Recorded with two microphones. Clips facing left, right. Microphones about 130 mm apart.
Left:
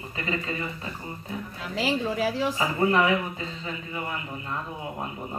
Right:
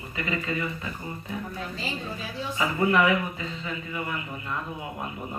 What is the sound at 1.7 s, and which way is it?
Speech, 90° left.